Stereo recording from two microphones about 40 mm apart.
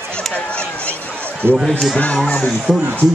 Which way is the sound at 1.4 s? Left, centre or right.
Right.